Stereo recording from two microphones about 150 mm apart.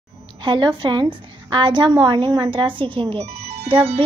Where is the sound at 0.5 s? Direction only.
30° right (ahead or behind).